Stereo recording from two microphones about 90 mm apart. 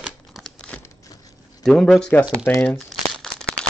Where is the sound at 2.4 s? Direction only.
35° left (ahead or behind).